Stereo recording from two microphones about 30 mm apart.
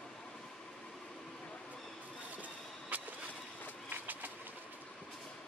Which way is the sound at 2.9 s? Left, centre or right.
Right.